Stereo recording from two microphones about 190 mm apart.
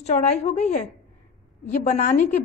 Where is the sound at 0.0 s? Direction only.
35° left (ahead or behind).